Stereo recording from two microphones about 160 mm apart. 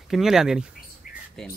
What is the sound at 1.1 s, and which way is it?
Bird, 60° left (ahead or behind).